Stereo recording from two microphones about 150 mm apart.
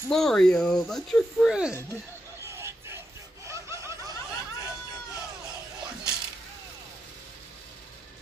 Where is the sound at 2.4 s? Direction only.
15° right (ahead or behind).